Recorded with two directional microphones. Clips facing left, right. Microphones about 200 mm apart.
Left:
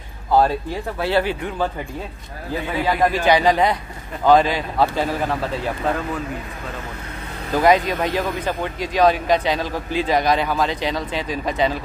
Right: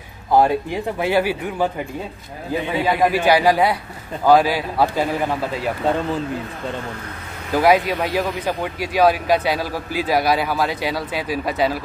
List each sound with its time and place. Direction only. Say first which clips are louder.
0.3 s speech: right 1 dB; 15° right (ahead or behind)
5.9 s speech: right 4 dB; 25° right (ahead or behind)
7.5 s speech: right 1 dB; 5° right (ahead or behind)